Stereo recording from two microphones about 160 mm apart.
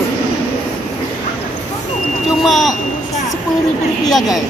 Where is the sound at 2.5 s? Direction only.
Centre (ahead or behind).